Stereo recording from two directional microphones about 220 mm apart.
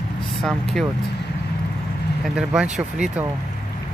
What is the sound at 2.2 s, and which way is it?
Speech, 5° right (ahead or behind).